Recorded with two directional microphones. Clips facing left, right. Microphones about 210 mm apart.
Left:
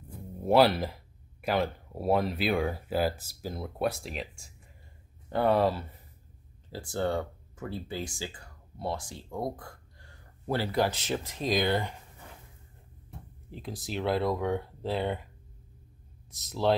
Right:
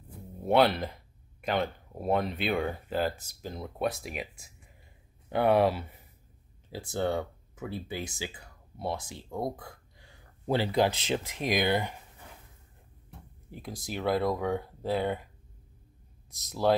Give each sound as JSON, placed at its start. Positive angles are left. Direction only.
{"t": 0.4, "sound": "speech", "side_deg": 0}
{"t": 9.3, "sound": "speech", "side_deg": -5}
{"t": 10.4, "sound": "speech", "side_deg": -20}
{"t": 13.5, "sound": "speech", "side_deg": -10}